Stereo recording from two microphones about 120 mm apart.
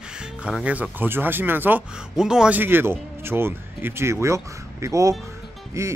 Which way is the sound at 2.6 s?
20° right (ahead or behind).